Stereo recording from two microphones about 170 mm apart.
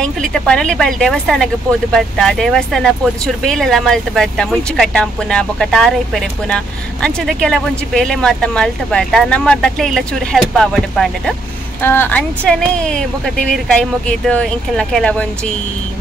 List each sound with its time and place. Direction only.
0.0 s speech: 5° left (ahead or behind)